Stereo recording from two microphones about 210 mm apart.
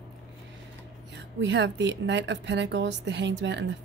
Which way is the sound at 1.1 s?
55° right (ahead or behind).